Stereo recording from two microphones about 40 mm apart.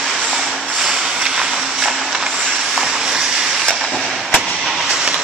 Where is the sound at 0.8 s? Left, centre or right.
Centre.